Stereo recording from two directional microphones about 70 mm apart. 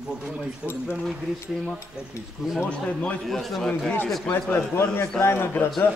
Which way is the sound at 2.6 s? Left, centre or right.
Centre.